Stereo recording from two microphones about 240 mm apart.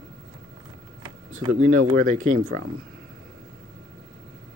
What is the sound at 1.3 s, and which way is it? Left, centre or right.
Speech, right.